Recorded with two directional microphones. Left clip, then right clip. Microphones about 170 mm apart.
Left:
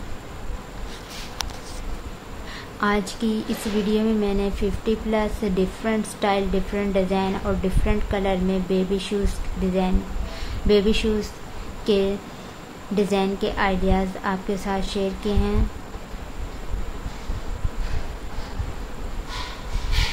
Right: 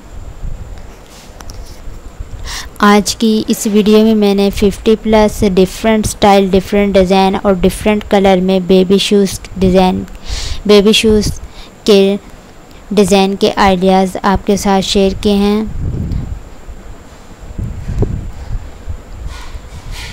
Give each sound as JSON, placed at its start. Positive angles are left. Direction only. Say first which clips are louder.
{"t": 2.4, "sound": "a woman's voice", "louder": "right 13 dB", "side_deg": -55}